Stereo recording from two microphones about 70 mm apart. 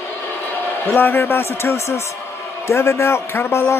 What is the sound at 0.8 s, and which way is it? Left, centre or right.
A man's voice, left.